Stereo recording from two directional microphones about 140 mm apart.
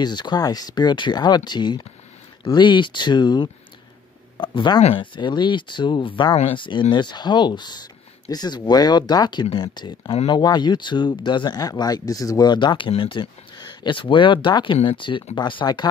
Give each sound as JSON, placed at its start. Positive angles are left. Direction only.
{"t": 0.0, "sound": "speech", "side_deg": 30}